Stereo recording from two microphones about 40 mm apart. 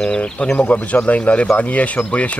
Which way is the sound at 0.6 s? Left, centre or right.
Left.